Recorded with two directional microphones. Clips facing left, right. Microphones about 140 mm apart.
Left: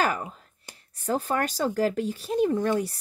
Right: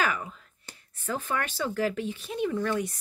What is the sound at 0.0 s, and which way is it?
A woman's voice, 40° left (ahead or behind).